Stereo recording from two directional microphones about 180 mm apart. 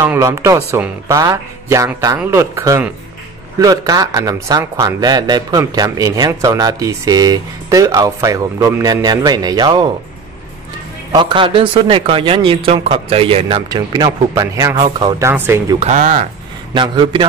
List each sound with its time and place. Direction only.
0.0 s a man's voice: 15° right (ahead or behind)
11.1 s a man's voice: 25° right (ahead or behind)
15.8 s speech: 45° right (ahead or behind)
16.7 s a man's voice: 25° right (ahead or behind)